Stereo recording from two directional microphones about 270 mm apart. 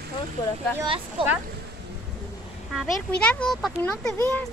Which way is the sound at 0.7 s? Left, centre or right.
Centre.